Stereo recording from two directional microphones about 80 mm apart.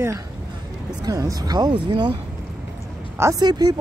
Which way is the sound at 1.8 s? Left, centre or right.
Right.